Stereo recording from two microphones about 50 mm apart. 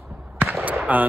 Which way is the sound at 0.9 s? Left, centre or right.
Right.